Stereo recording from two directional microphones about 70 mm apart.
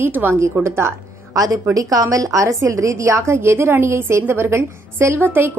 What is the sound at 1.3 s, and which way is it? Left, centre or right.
A woman's voice, right.